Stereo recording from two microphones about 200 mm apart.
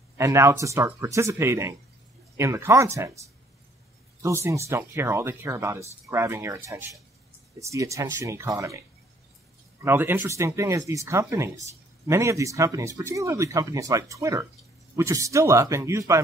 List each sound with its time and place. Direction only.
0.2 s speech: 15° right (ahead or behind)
4.2 s speech: 15° right (ahead or behind)
9.8 s speech: 10° right (ahead or behind)